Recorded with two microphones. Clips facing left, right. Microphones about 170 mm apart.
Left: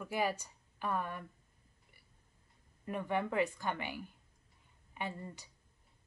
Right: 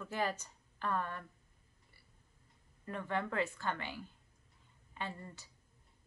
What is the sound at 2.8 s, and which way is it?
A woman's voice, 15° left (ahead or behind).